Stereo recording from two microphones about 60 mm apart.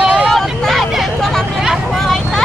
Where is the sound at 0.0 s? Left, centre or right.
Centre.